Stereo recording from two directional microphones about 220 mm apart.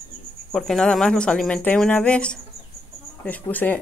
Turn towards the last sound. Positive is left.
turn(degrees=10)  # may be behind; listen again after turning